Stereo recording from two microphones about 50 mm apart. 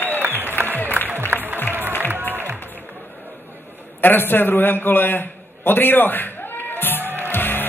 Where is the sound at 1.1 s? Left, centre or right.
Right.